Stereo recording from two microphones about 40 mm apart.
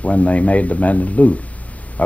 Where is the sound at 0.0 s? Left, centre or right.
Left.